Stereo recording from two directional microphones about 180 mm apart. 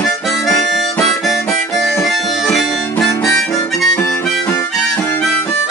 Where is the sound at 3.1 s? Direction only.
20° left (ahead or behind).